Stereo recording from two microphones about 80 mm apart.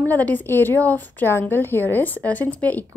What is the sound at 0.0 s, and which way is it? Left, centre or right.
A woman's voice, left.